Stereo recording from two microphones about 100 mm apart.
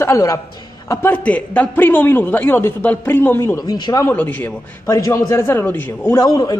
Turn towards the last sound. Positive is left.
turn(degrees=40)  # may be behind; listen again after turning